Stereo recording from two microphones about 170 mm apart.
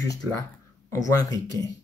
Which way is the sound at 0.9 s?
20° left (ahead or behind).